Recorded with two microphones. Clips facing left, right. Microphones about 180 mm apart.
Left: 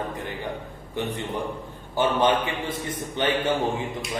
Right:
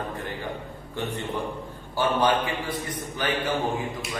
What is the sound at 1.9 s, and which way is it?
A man's voice, 20° left (ahead or behind).